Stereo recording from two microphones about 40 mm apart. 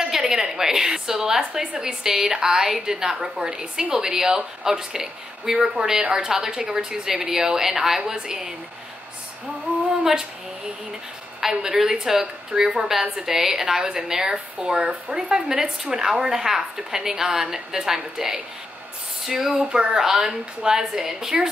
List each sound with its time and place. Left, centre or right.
0.0 s a woman's voice: centre
11.6 s a woman's voice: centre
14.3 s a woman's voice: right; by 19.5 s centre
19.5 s a woman's voice: right